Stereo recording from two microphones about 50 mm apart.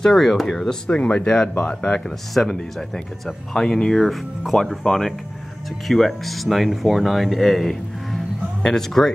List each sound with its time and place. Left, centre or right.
0.0 s speech: centre
0.7 s speech: centre
3.5 s speech: centre
4.5 s speech: left
4.8 s speech: centre